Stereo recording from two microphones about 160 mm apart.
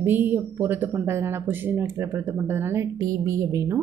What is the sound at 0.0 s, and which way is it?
Speech, 10° right (ahead or behind).